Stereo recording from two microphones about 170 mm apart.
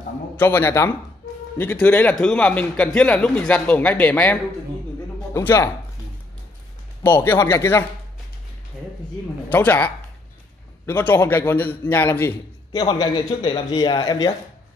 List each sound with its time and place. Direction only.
0.4 s a man's voice: 15° left (ahead or behind)
7.1 s a man's voice: 15° left (ahead or behind)
9.5 s a man's voice: 10° left (ahead or behind)
12.8 s a man's voice: 25° left (ahead or behind)